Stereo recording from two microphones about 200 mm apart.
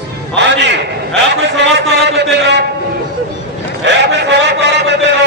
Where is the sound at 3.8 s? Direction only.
60° right (ahead or behind).